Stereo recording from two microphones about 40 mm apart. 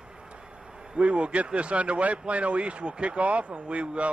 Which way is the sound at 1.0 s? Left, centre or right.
Right.